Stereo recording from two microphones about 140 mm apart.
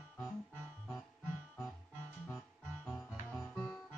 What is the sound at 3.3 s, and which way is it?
Music, 15° left (ahead or behind).